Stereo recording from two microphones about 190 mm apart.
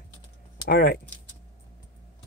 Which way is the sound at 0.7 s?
50° left (ahead or behind).